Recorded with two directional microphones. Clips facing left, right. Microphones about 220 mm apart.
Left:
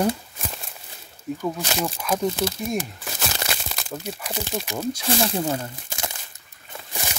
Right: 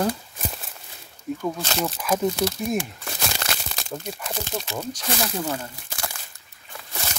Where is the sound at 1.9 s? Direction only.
5° right (ahead or behind).